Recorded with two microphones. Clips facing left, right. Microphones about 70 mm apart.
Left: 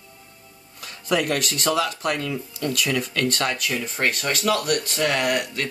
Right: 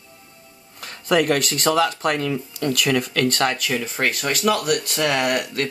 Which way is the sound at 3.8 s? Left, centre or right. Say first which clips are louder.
Right 1 dB; centre.